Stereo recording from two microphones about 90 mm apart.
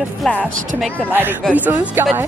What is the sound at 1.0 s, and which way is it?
Speech, 20° right (ahead or behind).